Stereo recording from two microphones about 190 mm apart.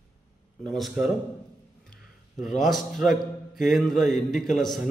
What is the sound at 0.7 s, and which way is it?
Speech, centre (ahead or behind).